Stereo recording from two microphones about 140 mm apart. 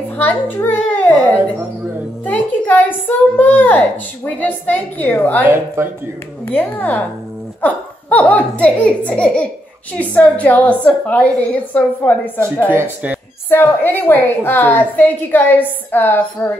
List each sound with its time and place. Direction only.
0.2 s a child's voice: 15° left (ahead or behind)
2.2 s a woman's voice: 10° left (ahead or behind)
5.4 s speech: 15° right (ahead or behind)
6.4 s a woman's voice: 10° left (ahead or behind)
12.6 s speech: 15° right (ahead or behind)
13.5 s a woman's voice: 15° left (ahead or behind)